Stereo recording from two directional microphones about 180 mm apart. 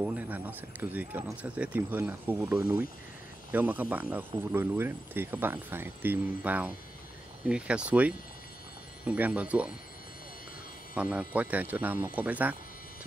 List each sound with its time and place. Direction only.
0.0 s speech: 10° right (ahead or behind)
11.0 s speech: 5° right (ahead or behind)